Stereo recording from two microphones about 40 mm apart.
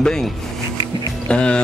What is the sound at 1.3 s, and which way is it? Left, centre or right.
Speech, left.